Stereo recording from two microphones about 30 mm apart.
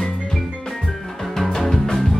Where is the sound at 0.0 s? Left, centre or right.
Centre.